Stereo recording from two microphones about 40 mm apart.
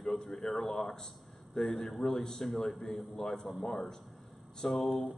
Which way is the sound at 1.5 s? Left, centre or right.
Centre.